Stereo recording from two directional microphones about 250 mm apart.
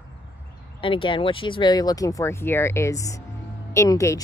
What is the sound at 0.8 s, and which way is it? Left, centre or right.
Speech, centre.